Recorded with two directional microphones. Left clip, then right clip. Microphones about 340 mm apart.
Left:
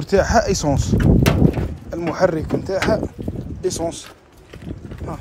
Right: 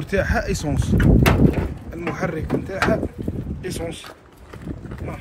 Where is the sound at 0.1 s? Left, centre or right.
Left.